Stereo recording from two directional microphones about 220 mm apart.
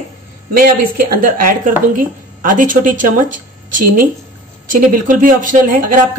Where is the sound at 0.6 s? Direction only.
40° right (ahead or behind).